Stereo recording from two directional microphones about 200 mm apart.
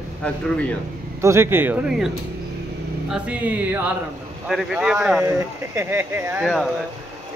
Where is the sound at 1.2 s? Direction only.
10° right (ahead or behind).